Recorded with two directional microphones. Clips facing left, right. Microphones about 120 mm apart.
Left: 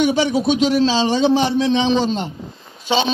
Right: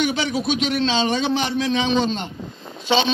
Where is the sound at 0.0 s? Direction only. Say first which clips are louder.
Left 5 dB; 25° left (ahead or behind).